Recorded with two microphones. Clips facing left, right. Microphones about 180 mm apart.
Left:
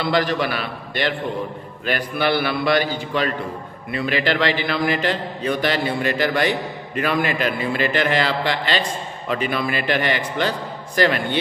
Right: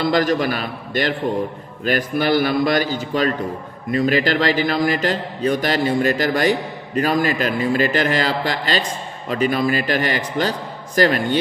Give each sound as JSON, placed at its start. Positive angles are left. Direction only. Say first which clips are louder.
{"t": 0.0, "sound": "a man's voice", "louder": "right 3 dB", "side_deg": -45}